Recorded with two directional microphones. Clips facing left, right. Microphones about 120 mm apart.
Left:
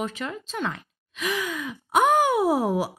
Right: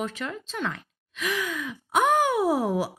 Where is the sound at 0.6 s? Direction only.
20° left (ahead or behind).